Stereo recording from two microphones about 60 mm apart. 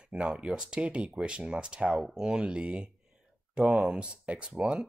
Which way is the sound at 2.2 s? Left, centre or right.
Centre.